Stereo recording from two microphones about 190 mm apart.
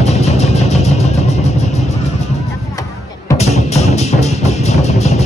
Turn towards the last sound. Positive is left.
turn(degrees=35)  # may be behind; listen again after turning